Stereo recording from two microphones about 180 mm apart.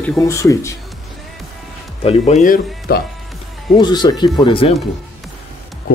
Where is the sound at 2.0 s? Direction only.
35° left (ahead or behind).